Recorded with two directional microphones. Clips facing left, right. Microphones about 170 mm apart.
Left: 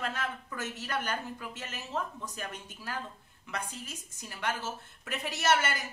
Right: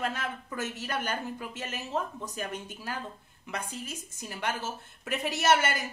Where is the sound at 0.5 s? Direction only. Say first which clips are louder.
Right 3 dB; 20° right (ahead or behind).